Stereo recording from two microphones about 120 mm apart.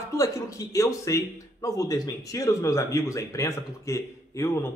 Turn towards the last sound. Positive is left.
turn(degrees=25)  # may be behind; listen again after turning